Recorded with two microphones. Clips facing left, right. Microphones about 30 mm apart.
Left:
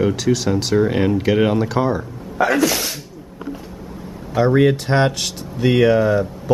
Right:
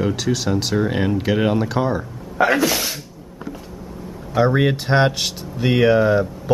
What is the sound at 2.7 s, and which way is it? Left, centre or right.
Speech, centre.